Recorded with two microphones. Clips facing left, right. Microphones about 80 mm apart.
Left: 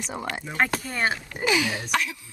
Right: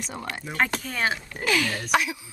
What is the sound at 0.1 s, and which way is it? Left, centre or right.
Speech, centre.